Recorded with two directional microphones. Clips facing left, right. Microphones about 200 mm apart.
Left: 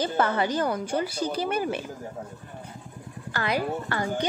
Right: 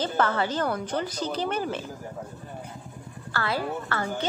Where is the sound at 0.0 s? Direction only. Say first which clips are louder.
Left 1 dB; 15° left (ahead or behind).